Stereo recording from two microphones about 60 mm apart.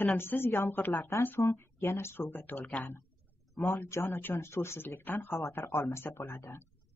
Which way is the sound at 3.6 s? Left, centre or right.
Left.